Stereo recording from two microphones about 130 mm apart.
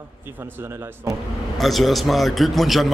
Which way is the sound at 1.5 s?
Centre (ahead or behind).